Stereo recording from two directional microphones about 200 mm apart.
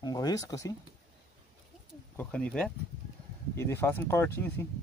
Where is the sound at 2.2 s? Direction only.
5° left (ahead or behind).